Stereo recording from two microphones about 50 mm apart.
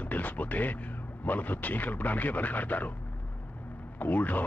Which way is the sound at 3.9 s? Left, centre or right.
Left.